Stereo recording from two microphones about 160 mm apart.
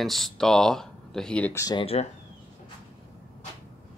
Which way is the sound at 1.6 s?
25° left (ahead or behind).